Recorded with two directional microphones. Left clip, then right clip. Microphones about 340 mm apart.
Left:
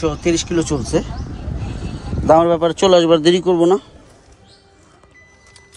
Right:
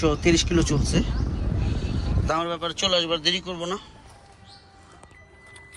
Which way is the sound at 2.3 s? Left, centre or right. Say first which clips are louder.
Left 14 dB; left.